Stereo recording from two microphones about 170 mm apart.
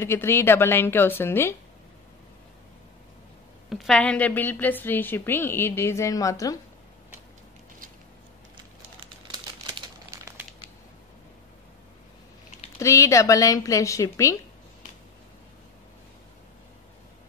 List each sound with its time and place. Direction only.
0.0 s a woman's voice: 15° left (ahead or behind)
3.7 s a woman's voice: 5° left (ahead or behind); by 6.6 s 20° left (ahead or behind)
10.1 s crushing: 15° right (ahead or behind)
12.7 s speech: 20° left (ahead or behind)